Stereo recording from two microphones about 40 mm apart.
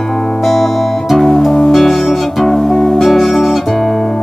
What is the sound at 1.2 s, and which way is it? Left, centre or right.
Music, centre.